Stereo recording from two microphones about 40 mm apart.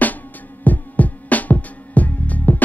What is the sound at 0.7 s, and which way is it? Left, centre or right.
Music, left.